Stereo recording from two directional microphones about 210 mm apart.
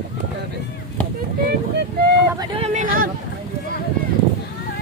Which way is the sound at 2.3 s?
30° right (ahead or behind).